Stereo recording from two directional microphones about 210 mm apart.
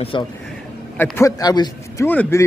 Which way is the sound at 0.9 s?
10° left (ahead or behind).